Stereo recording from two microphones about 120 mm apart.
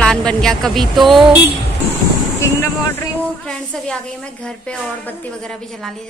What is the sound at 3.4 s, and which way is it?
A woman's voice, 5° left (ahead or behind).